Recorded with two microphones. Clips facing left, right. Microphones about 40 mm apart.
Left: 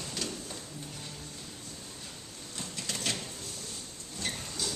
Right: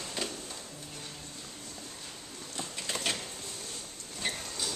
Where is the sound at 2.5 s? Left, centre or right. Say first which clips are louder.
Right 2 dB; right.